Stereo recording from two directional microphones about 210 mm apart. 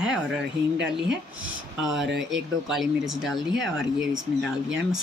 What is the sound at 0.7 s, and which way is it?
Speech, 55° right (ahead or behind).